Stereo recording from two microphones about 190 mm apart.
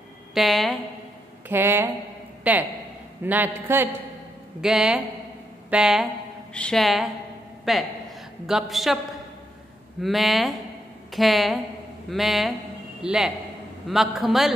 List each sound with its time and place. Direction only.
0.3 s a man's voice: centre (ahead or behind)
1.5 s a man's voice: 10° right (ahead or behind)
10.0 s a man's voice: centre (ahead or behind)